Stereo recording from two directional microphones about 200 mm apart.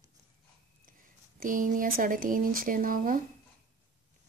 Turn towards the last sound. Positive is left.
turn(degrees=-45)  # may be behind; listen again after turning